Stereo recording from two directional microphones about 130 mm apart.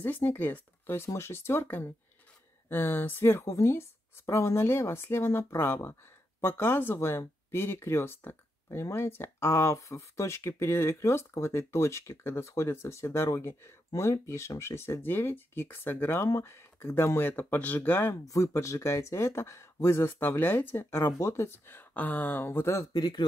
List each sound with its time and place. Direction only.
0.0 s speech: 15° left (ahead or behind); by 23.2 s 30° left (ahead or behind)